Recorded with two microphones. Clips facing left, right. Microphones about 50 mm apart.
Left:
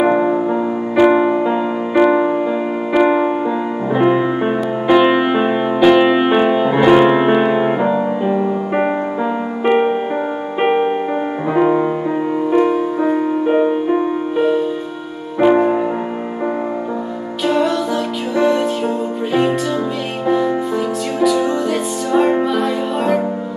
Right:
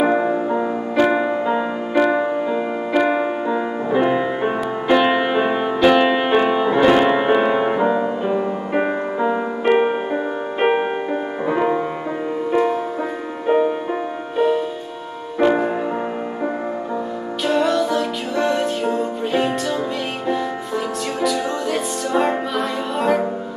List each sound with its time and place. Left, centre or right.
0.0 s music: centre
12.4 s music: centre
15.3 s music: centre
17.5 s music: centre
22.1 s music: centre